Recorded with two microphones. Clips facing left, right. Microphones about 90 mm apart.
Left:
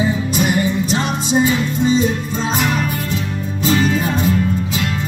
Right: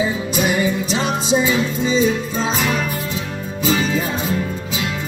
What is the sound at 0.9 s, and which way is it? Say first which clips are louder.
Music: left 1 dB; 50° left (ahead or behind).